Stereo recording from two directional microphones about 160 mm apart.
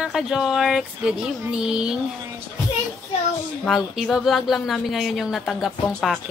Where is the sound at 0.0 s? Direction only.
Centre (ahead or behind).